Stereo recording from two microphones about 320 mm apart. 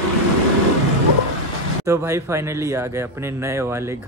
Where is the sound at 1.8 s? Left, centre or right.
Centre.